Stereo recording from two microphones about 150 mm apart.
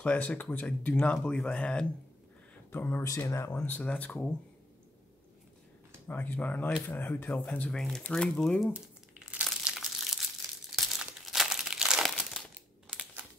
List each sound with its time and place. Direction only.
0.0 s speech: 10° left (ahead or behind)
6.0 s speech: 10° left (ahead or behind)
8.7 s crumpling: 5° right (ahead or behind)